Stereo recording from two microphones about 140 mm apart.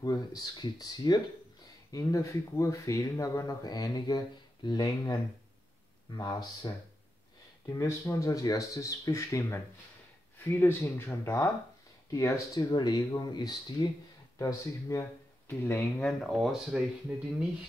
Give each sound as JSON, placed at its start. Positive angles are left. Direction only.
{"t": 0.0, "sound": "speech", "side_deg": 25}
{"t": 16.1, "sound": "speech", "side_deg": 0}